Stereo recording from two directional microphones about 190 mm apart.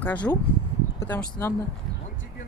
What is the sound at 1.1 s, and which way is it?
Speech, 10° left (ahead or behind).